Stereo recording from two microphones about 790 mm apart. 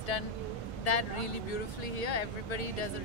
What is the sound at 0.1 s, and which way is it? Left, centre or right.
Speech, left.